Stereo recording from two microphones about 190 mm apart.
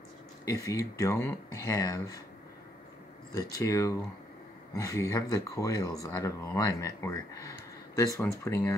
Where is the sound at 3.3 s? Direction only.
20° left (ahead or behind).